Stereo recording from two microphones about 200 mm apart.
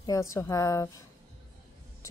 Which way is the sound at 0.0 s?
15° left (ahead or behind).